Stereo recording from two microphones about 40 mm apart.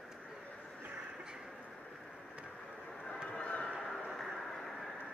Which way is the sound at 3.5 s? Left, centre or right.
Left.